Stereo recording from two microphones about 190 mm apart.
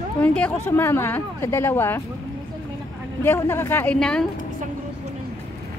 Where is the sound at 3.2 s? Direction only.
10° left (ahead or behind).